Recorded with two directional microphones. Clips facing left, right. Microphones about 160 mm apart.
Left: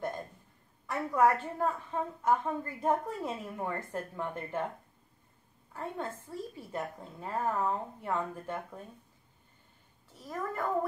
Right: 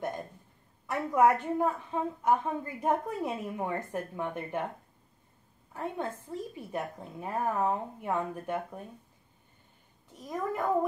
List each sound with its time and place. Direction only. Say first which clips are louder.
0.8 s a woman's voice: right 2 dB; 15° right (ahead or behind)
5.7 s a woman's voice: right 3 dB; 15° right (ahead or behind)
10.1 s a woman's voice: right 3 dB; 15° right (ahead or behind)